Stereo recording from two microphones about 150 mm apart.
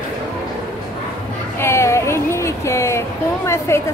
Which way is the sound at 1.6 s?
20° left (ahead or behind).